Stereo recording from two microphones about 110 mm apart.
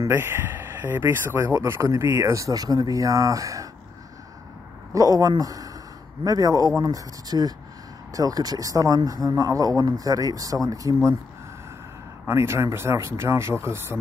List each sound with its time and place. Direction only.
0.0 s speech: 20° right (ahead or behind)
1.5 s a man's voice: 30° right (ahead or behind)
4.9 s a man's voice: 35° right (ahead or behind)
12.3 s speech: 25° right (ahead or behind)